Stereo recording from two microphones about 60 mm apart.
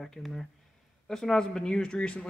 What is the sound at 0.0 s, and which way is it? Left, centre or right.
Speech, centre.